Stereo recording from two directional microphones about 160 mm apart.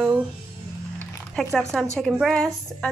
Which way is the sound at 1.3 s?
5° left (ahead or behind).